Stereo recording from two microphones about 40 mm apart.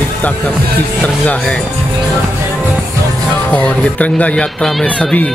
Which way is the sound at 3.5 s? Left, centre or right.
Left.